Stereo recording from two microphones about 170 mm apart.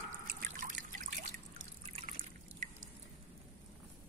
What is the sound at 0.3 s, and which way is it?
Trickle, 55° right (ahead or behind).